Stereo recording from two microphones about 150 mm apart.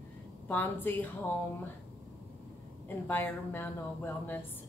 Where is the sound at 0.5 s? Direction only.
15° left (ahead or behind).